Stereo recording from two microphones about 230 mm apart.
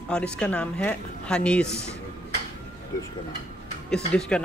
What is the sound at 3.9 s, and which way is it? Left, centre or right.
Speech, centre.